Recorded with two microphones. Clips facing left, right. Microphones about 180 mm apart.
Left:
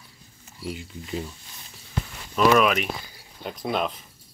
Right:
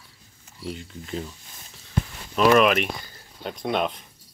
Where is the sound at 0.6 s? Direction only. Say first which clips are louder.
Even; 10° left (ahead or behind).